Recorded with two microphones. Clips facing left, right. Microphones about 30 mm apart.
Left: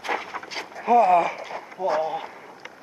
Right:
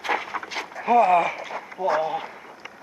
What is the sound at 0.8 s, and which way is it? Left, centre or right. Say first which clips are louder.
Speech: even; centre.